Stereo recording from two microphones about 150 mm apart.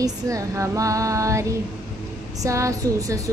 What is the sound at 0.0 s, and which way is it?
Speech, 20° right (ahead or behind).